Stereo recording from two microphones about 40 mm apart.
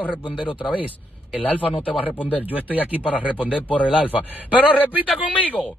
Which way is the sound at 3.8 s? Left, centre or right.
Right.